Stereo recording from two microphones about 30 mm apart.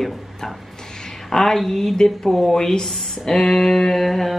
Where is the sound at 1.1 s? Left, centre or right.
Centre.